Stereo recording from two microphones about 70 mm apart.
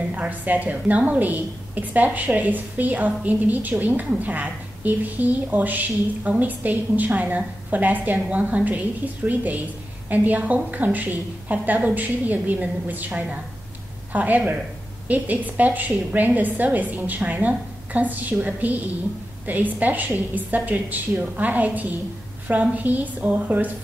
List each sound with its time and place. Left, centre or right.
0.1 s a woman's voice: right